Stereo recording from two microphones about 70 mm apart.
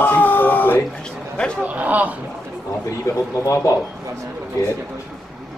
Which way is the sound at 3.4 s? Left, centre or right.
Left.